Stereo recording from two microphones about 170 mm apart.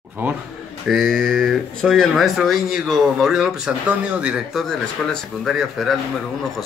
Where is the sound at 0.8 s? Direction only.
Centre (ahead or behind).